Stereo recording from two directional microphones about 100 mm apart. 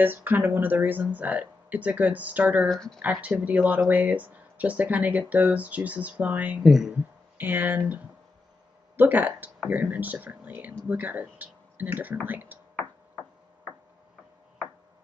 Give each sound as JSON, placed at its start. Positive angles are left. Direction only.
{"t": 0.0, "sound": "speech", "side_deg": -20}
{"t": 2.7, "sound": "speech", "side_deg": 5}
{"t": 3.0, "sound": "speech", "side_deg": -15}
{"t": 6.6, "sound": "speech", "side_deg": -5}
{"t": 7.3, "sound": "speech", "side_deg": -20}